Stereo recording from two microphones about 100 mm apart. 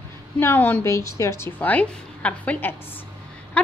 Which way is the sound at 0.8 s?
30° left (ahead or behind).